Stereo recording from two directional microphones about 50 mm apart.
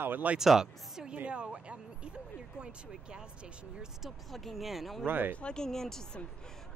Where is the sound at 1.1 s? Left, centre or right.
Right.